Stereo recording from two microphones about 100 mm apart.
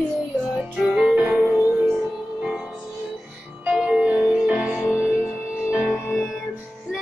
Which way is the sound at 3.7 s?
10° right (ahead or behind).